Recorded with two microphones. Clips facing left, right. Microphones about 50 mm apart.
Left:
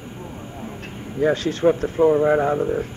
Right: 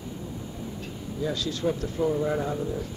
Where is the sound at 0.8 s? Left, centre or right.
Left.